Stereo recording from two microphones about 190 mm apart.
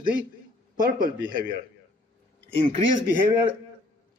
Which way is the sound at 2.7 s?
45° right (ahead or behind).